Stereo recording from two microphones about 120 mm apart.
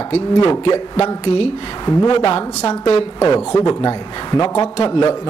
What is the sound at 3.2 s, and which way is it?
A man's voice, 35° left (ahead or behind).